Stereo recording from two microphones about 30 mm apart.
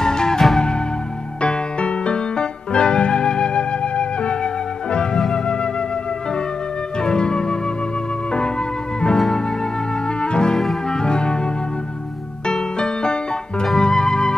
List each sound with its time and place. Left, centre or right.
0.0 s music: left
5.3 s flute: left
7.0 s music: left
12.7 s music: left